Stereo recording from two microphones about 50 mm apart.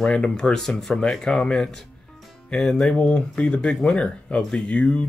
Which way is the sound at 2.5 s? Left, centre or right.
Centre.